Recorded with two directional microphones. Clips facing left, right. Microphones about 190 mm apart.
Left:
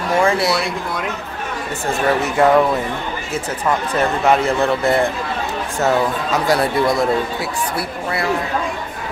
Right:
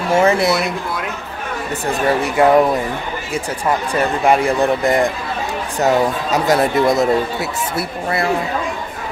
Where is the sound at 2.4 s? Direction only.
15° right (ahead or behind).